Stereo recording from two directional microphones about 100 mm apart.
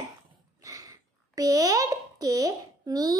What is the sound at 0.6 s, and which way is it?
A child's voice, 35° right (ahead or behind).